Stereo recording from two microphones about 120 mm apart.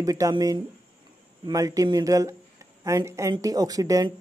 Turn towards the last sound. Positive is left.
turn(degrees=-30)  # may be behind; listen again after turning